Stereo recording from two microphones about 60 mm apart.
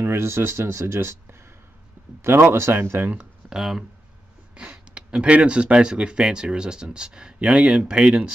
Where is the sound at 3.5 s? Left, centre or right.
Centre.